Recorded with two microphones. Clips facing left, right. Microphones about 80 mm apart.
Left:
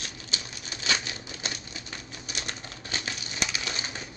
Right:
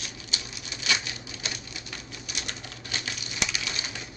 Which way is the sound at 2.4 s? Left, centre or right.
Left.